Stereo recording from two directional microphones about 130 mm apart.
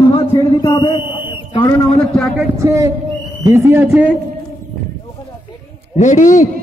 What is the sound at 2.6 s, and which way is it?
A man's voice, 20° right (ahead or behind).